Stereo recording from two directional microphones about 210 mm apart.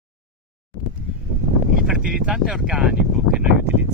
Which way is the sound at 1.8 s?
5° right (ahead or behind).